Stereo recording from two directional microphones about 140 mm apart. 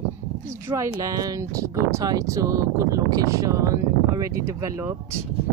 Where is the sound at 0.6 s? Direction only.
20° right (ahead or behind).